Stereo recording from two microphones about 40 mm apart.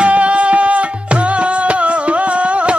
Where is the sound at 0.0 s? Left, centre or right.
Right.